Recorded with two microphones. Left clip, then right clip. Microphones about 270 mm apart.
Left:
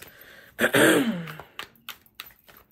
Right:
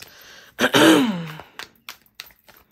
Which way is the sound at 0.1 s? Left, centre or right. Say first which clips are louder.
Right 4 dB; centre.